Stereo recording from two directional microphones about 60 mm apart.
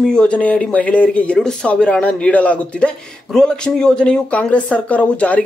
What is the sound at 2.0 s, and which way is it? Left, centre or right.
Speech, left.